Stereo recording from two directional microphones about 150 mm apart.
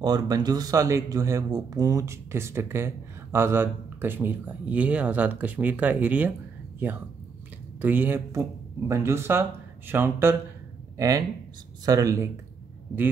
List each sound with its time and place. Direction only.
0.0 s speech: 25° right (ahead or behind); by 6.3 s 10° right (ahead or behind)
7.8 s speech: 10° right (ahead or behind)